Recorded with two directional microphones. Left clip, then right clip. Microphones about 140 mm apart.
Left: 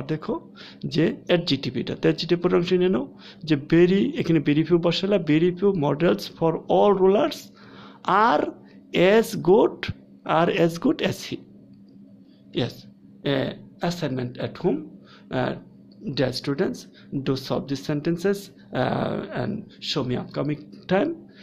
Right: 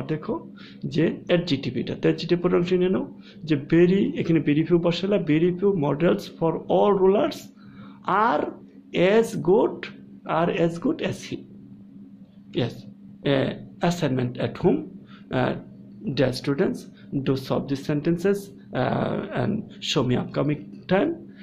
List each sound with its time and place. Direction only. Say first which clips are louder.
0.0 s speech: even; 30° left (ahead or behind)
13.2 s speech: right 2 dB; 20° left (ahead or behind)
20.8 s speech: even; 25° left (ahead or behind)